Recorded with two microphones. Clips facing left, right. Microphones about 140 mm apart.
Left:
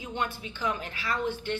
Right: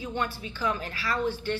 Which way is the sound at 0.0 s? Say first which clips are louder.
Right 2 dB; 20° left (ahead or behind).